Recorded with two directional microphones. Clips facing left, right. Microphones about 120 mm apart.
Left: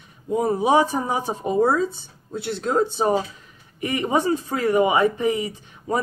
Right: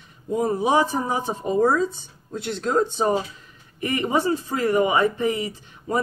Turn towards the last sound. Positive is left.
turn(degrees=15)  # may be behind; listen again after turning